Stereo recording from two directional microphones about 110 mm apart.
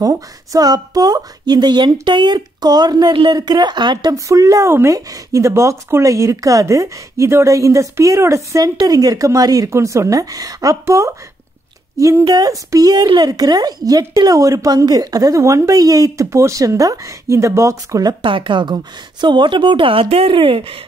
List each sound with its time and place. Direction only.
0.0 s speech: 30° right (ahead or behind)
18.2 s a woman's voice: 50° right (ahead or behind)